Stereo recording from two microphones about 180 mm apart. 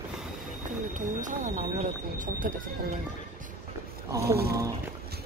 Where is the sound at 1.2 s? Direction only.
45° right (ahead or behind).